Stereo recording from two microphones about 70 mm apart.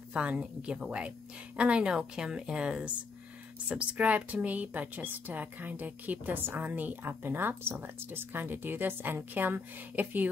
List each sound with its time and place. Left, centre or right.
0.1 s a woman's voice: centre